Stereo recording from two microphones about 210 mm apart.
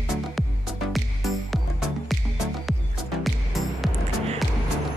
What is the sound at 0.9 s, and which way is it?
Music, centre (ahead or behind).